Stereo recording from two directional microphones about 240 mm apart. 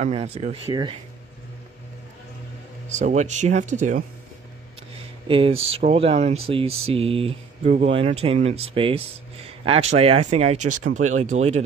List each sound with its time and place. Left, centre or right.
0.0 s speech: right
2.9 s speech: right
5.3 s speech: right